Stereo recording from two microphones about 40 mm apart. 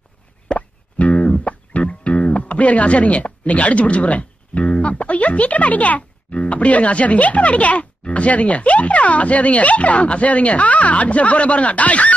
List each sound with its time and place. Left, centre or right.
0.5 s music: left